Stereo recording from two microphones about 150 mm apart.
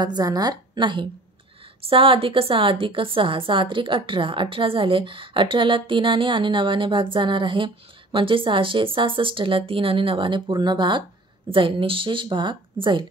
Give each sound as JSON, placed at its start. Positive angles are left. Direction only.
{"t": 0.0, "sound": "a woman's voice", "side_deg": -25}